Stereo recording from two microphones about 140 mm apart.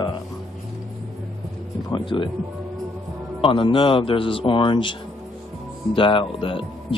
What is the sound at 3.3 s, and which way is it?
Speech, 40° left (ahead or behind).